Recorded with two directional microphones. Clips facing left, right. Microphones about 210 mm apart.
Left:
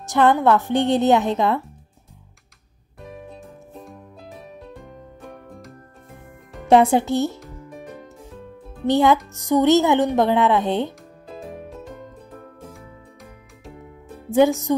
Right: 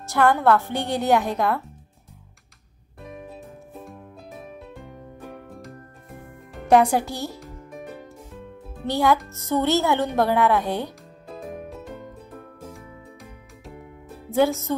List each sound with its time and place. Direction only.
0.0 s speech: 20° left (ahead or behind)
3.3 s music: centre (ahead or behind)
6.7 s speech: 25° left (ahead or behind)
7.3 s music: centre (ahead or behind)
8.8 s speech: 20° left (ahead or behind)
11.7 s music: centre (ahead or behind)
14.4 s music: 20° left (ahead or behind)